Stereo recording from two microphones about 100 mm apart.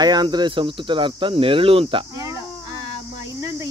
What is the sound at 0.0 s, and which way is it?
Speech, 45° right (ahead or behind).